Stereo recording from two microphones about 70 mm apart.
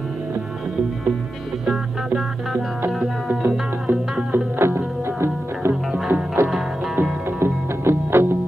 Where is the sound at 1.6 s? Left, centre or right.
Centre.